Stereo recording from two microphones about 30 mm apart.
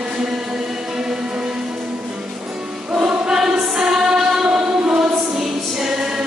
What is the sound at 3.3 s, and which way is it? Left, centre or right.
Choir, centre.